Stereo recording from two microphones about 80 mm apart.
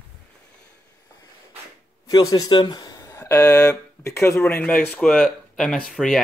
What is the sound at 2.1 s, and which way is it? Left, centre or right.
Speech, left.